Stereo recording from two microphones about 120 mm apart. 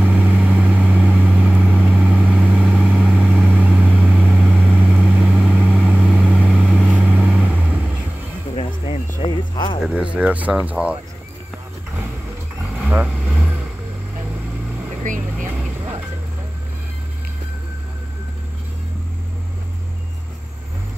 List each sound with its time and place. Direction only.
0.0 s vehicle: 10° right (ahead or behind)
9.2 s a sound: 40° left (ahead or behind)
9.9 s a sound: 10° right (ahead or behind)
10.7 s speech: 10° right (ahead or behind)
12.8 s vehicle: 10° right (ahead or behind)
15.0 s vehicle: 90° right